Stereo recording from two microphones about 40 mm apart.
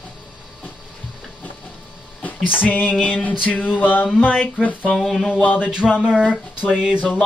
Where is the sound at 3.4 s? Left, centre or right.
Left.